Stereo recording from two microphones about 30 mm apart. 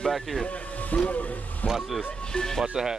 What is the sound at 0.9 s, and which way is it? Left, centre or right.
Speech, left.